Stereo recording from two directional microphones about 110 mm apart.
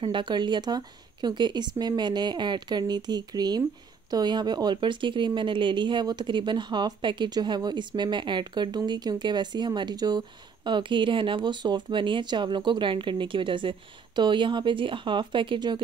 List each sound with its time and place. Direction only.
0.0 s speech: 45° right (ahead or behind)